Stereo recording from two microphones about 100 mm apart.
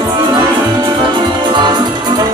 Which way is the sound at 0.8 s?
50° right (ahead or behind).